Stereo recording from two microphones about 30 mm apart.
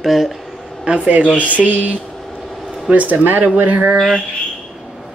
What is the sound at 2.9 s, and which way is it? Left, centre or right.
Speech, right.